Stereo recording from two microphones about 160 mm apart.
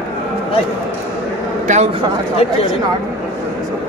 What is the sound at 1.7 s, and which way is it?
Speech, 50° right (ahead or behind).